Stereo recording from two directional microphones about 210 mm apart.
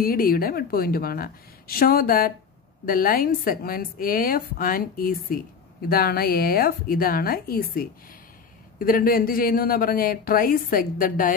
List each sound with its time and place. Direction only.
0.0 s a woman's voice: 45° left (ahead or behind)